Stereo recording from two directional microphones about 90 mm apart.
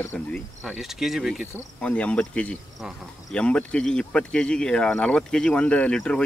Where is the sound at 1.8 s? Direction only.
15° left (ahead or behind).